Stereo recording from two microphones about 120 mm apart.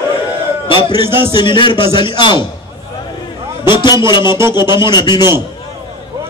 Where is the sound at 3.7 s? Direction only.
40° left (ahead or behind).